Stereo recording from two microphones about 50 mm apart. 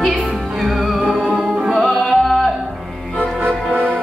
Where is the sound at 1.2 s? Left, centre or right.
Centre.